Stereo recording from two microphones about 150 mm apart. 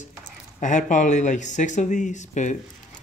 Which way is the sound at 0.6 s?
55° left (ahead or behind).